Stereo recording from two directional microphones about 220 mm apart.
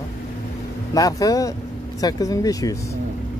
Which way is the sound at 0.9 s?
15° left (ahead or behind).